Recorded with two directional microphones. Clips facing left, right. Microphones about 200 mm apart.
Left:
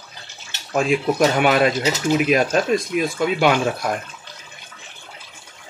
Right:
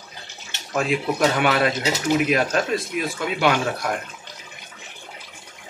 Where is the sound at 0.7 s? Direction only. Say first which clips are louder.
Left 4 dB; 15° left (ahead or behind).